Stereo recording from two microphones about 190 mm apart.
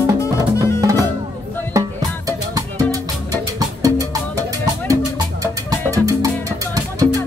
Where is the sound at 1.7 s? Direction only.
15° right (ahead or behind).